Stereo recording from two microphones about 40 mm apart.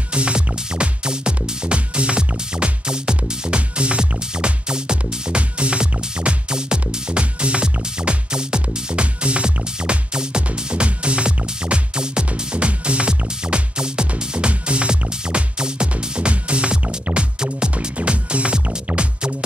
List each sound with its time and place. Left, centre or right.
0.1 s music: right